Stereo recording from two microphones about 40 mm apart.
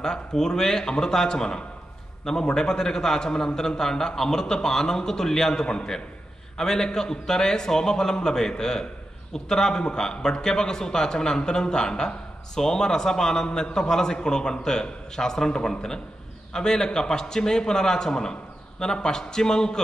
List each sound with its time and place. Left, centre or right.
0.0 s a man's voice: centre